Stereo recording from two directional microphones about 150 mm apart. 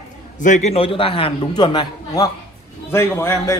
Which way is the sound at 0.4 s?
50° left (ahead or behind).